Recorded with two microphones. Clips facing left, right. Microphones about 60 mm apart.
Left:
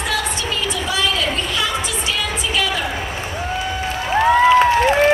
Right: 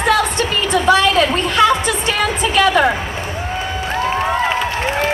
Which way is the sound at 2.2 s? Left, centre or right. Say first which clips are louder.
Right 6 dB; right.